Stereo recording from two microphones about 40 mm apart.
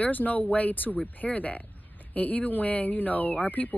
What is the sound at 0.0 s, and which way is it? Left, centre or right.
Speech, left.